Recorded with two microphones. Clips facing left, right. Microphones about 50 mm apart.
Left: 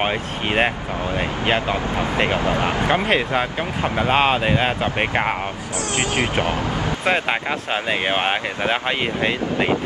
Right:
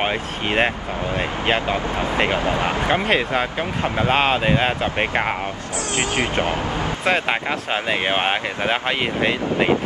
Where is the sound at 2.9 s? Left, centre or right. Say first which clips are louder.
Even; centre.